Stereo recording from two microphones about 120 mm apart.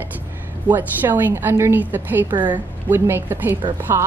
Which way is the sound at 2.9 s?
20° right (ahead or behind).